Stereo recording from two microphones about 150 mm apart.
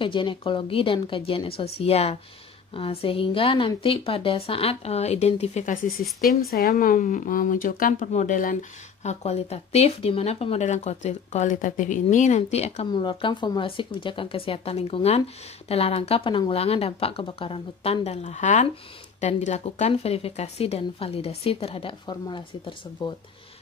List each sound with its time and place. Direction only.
0.0 s speech: 35° left (ahead or behind); by 5.8 s 50° left (ahead or behind)
6.0 s speech: centre (ahead or behind)
6.5 s speech: 75° left (ahead or behind)
9.0 s speech: 45° left (ahead or behind)
12.9 s speech: 30° left (ahead or behind)